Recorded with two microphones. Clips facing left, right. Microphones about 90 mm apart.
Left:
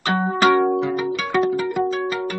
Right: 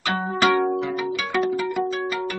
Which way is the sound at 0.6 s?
15° left (ahead or behind).